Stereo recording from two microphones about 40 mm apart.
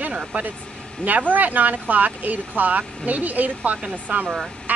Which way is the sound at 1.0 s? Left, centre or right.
Right.